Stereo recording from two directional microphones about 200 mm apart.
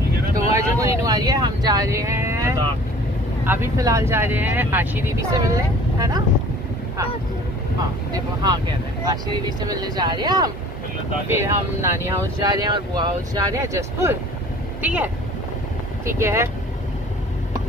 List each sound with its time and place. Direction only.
0.7 s speech: 20° right (ahead or behind)
8.1 s speech: 20° right (ahead or behind)
16.2 s speech: 15° right (ahead or behind)